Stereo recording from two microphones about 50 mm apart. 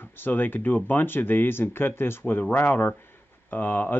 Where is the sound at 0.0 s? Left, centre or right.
Left.